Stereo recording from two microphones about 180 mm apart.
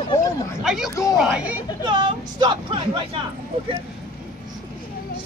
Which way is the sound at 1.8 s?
25° right (ahead or behind).